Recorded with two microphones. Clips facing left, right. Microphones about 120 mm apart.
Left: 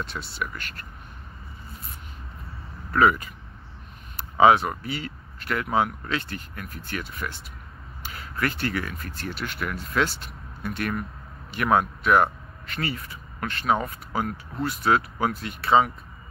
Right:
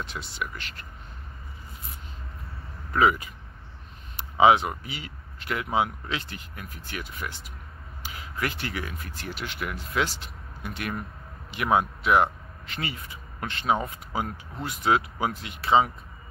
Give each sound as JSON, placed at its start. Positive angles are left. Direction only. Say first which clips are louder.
{"t": 0.0, "sound": "speech", "louder": "left 2 dB", "side_deg": -15}
{"t": 2.9, "sound": "speech", "louder": "left 2 dB", "side_deg": -10}